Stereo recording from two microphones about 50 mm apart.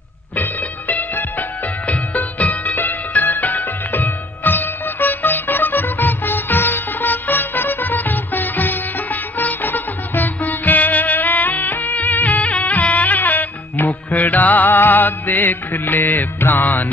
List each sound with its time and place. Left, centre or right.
0.4 s music: left